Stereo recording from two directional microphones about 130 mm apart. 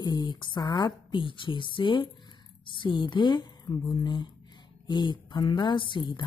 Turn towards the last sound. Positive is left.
turn(degrees=35)  # may be behind; listen again after turning